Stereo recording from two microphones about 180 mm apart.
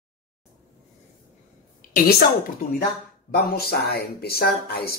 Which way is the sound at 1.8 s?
45° left (ahead or behind).